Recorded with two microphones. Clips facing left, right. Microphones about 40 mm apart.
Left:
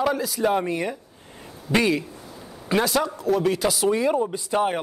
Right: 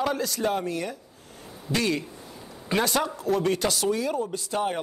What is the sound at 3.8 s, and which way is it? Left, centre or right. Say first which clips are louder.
Speech: left 5 dB; left.